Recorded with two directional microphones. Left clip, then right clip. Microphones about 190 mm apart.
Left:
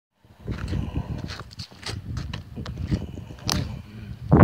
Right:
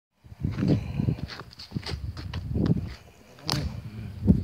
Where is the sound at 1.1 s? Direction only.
50° left (ahead or behind).